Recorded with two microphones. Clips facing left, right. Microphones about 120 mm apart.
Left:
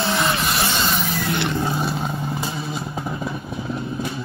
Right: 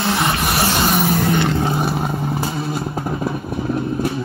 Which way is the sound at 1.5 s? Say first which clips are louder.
Right 4 dB; 65° right (ahead or behind).